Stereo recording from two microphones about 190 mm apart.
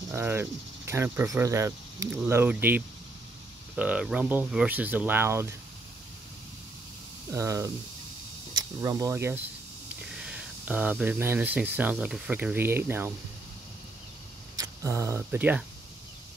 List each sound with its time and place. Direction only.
0.1 s speech: 10° right (ahead or behind)
7.3 s speech: 15° right (ahead or behind)
14.6 s speech: 15° right (ahead or behind)